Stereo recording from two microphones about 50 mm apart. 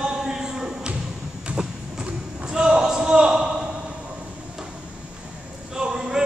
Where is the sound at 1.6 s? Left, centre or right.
Centre.